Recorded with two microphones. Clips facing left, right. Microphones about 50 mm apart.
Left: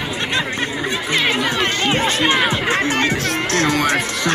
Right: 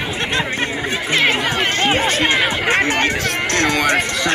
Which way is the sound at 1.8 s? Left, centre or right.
Right.